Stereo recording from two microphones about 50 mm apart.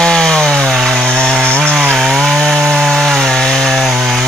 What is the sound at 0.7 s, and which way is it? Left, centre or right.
Chainsaw, centre.